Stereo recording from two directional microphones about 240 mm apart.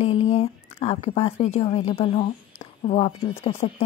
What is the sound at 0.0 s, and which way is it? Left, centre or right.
A woman's voice, left.